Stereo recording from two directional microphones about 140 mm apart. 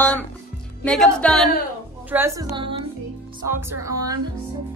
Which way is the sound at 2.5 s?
40° right (ahead or behind).